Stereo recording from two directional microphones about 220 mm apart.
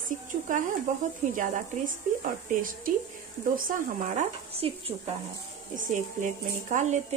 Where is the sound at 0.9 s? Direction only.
35° right (ahead or behind).